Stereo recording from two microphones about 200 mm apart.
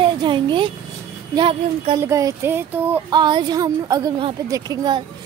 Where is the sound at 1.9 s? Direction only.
15° right (ahead or behind).